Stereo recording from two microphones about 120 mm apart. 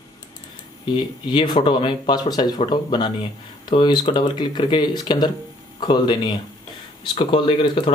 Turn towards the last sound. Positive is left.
turn(degrees=45)  # may be behind; listen again after turning